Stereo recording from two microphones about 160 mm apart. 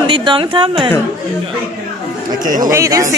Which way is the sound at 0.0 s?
30° right (ahead or behind).